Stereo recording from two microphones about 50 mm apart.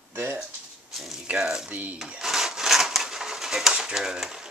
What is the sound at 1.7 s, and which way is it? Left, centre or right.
Speech, right.